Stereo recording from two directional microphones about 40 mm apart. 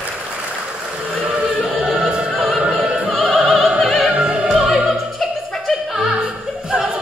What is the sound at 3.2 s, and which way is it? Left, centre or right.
Opera, right.